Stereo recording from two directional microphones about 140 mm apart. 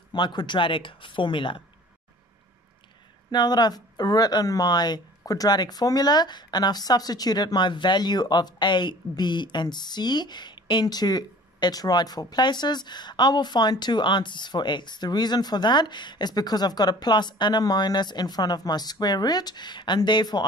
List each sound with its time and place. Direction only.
0.1 s speech: 30° left (ahead or behind)
3.3 s speech: 30° left (ahead or behind)